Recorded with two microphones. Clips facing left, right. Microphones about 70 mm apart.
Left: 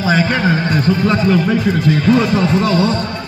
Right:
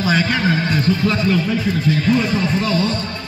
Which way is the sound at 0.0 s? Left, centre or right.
Left.